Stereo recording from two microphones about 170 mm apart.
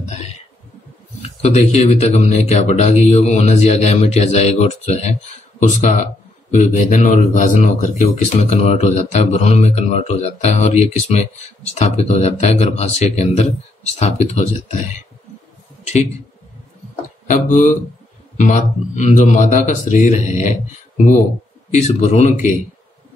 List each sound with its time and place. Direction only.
1.2 s a man's voice: 40° left (ahead or behind)
17.3 s a man's voice: 45° left (ahead or behind)
21.7 s speech: 40° left (ahead or behind)